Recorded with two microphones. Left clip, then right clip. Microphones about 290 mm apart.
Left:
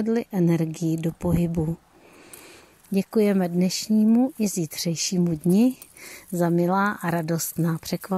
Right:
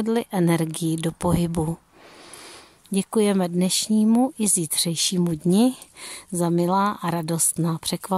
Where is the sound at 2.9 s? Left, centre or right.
Centre.